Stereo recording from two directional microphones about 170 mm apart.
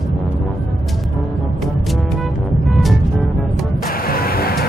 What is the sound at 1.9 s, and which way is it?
Music, centre (ahead or behind).